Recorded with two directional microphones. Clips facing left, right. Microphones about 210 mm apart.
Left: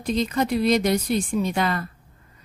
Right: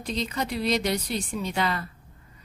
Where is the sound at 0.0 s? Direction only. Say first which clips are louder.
Left 7 dB; 50° left (ahead or behind).